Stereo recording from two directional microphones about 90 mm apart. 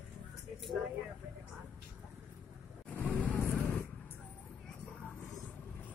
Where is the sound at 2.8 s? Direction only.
15° left (ahead or behind).